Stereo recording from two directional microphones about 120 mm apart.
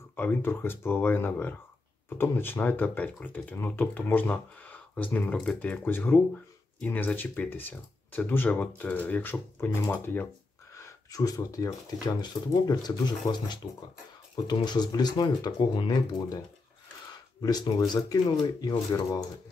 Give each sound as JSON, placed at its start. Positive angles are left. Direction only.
{"t": 0.1, "sound": "speech", "side_deg": 15}
{"t": 11.1, "sound": "speech", "side_deg": 30}
{"t": 14.3, "sound": "speech", "side_deg": 35}
{"t": 17.4, "sound": "speech", "side_deg": 35}